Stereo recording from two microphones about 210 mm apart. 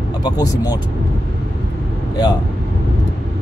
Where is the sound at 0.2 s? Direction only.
20° left (ahead or behind).